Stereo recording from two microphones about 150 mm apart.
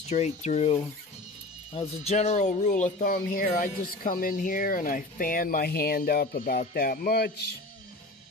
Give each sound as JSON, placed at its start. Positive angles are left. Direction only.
{"t": 0.1, "sound": "speech", "side_deg": 50}